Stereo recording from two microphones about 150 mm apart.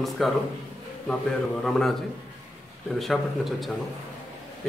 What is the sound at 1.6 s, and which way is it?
Speech, 5° left (ahead or behind).